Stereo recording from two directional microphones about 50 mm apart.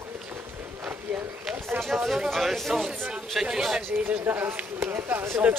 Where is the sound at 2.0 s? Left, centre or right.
Centre.